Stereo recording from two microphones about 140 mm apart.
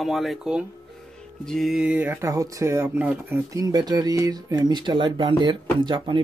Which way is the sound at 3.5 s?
25° right (ahead or behind).